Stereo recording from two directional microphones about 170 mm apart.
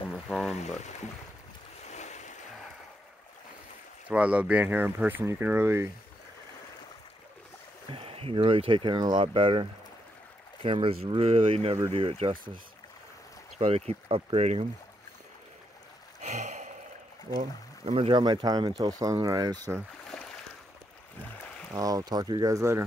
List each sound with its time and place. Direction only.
0.1 s a sound: centre (ahead or behind)
1.9 s waves: 45° left (ahead or behind)
4.1 s speech: 5° right (ahead or behind)
7.9 s speech: 35° right (ahead or behind)
13.6 s speech: 35° right (ahead or behind)
16.2 s a sound: 45° right (ahead or behind)
17.4 s speech: 35° right (ahead or behind)
20.1 s boat: centre (ahead or behind)
21.7 s speech: 20° right (ahead or behind)